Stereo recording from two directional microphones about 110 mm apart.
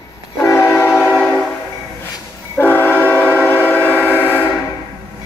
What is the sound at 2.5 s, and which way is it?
Train, 20° left (ahead or behind).